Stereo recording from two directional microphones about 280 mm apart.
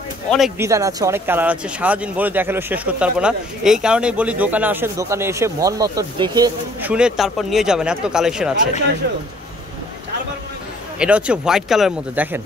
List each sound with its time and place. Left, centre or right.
0.6 s speech: centre
9.0 s speech: right
11.0 s speech: centre